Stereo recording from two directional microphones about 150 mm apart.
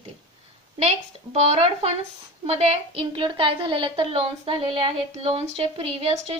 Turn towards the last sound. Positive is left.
turn(degrees=-40)  # may be behind; listen again after turning